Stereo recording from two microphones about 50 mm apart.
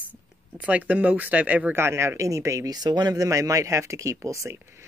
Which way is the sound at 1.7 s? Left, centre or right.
Right.